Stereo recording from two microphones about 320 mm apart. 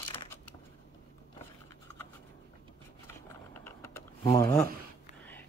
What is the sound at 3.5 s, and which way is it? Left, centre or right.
Vehicle, centre.